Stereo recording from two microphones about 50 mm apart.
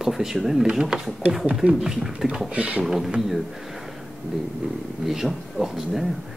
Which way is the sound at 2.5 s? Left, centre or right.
Right.